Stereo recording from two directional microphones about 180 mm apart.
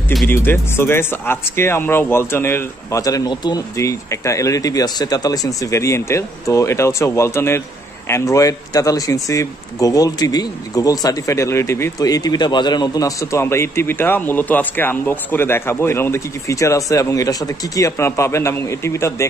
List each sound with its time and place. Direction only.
0.3 s speech: 15° left (ahead or behind)